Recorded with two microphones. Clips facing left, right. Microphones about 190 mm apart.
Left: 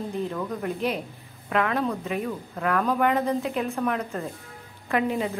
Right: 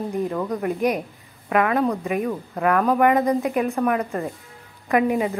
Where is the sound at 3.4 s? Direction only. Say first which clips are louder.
Right 5 dB; 60° right (ahead or behind).